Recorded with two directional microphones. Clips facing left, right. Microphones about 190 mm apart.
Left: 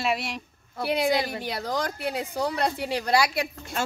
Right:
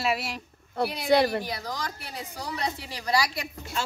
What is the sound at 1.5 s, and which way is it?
A woman's voice, 60° left (ahead or behind).